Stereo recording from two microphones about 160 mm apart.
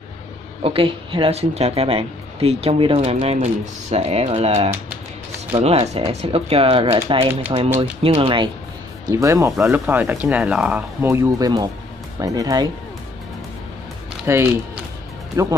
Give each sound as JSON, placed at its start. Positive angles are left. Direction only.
{"t": 0.6, "sound": "speech", "side_deg": -35}
{"t": 9.0, "sound": "speech", "side_deg": -20}
{"t": 11.1, "sound": "speech", "side_deg": -20}
{"t": 14.2, "sound": "speech", "side_deg": -15}